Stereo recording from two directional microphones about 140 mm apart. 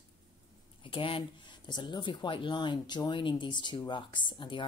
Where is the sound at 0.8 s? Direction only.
40° left (ahead or behind).